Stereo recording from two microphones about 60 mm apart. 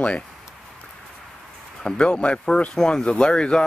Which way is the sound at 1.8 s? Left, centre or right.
Centre.